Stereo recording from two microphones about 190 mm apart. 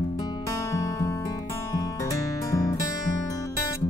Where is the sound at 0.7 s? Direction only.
15° left (ahead or behind).